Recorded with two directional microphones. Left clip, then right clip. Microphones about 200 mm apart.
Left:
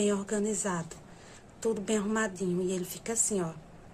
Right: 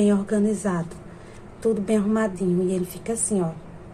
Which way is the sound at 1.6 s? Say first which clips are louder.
Right 8 dB; 10° left (ahead or behind).